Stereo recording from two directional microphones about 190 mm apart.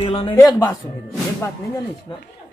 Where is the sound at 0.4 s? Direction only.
20° left (ahead or behind).